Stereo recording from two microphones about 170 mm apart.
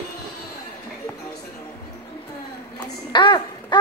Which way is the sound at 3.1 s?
25° left (ahead or behind).